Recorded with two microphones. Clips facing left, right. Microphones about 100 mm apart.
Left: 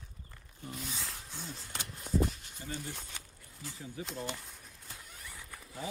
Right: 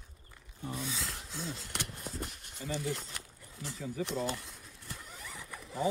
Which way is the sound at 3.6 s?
85° right.